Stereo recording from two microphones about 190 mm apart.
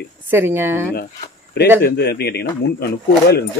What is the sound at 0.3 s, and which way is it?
Speech, 10° right (ahead or behind).